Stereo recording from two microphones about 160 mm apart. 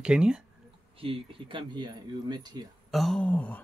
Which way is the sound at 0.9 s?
35° right (ahead or behind).